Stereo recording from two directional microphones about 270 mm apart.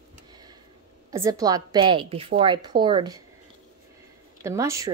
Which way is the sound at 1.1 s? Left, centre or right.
Centre.